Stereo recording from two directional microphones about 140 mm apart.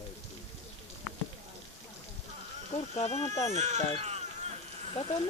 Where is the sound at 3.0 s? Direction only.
50° left (ahead or behind).